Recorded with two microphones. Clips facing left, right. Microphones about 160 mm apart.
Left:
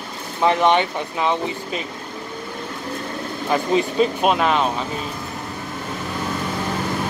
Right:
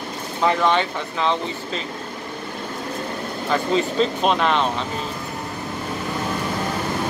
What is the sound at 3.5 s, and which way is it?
Speech, 15° left (ahead or behind).